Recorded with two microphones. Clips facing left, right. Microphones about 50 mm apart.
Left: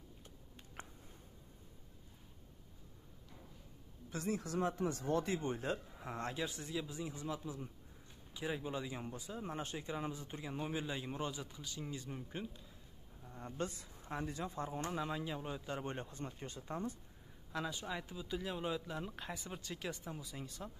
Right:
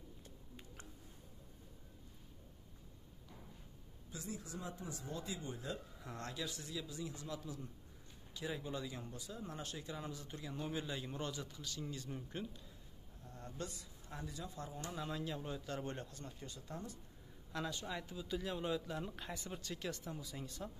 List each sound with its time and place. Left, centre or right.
4.1 s speech: left; by 13.5 s centre
13.5 s speech: left
15.0 s speech: left
17.5 s speech: centre